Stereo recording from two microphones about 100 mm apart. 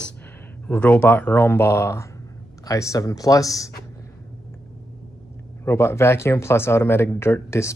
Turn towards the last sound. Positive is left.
turn(degrees=25)  # may be behind; listen again after turning